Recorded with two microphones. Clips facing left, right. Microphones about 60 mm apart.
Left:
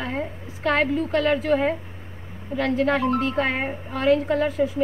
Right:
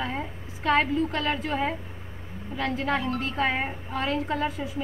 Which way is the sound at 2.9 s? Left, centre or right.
Left.